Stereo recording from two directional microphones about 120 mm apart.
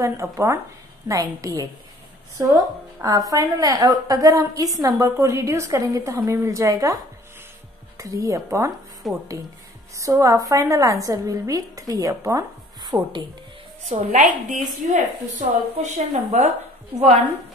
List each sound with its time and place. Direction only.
0.0 s a woman's voice: 25° right (ahead or behind)
8.0 s a woman's voice: 25° right (ahead or behind)
9.0 s speech: centre (ahead or behind)
9.9 s a woman's voice: 25° right (ahead or behind)
12.8 s a woman's voice: 40° right (ahead or behind)
13.8 s a woman's voice: 90° right